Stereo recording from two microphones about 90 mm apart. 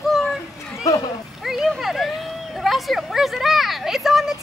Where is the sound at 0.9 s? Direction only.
40° left (ahead or behind).